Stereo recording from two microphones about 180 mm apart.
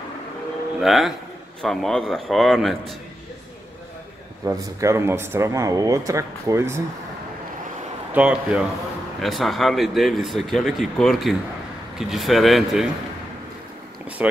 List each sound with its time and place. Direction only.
0.7 s speech: centre (ahead or behind)
4.5 s speech: 15° right (ahead or behind)
8.1 s speech: 5° right (ahead or behind)